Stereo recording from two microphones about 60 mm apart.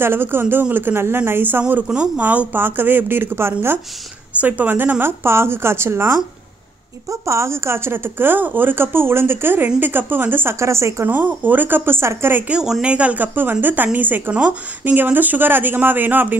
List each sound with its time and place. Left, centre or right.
0.0 s a woman's voice: right
4.4 s a woman's voice: right
5.2 s speech: right
7.1 s speech: right
10.5 s speech: right
11.4 s speech: right
12.4 s speech: centre; by 14.3 s right
14.3 s speech: right